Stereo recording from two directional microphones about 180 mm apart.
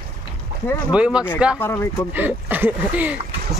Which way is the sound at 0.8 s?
5° right (ahead or behind).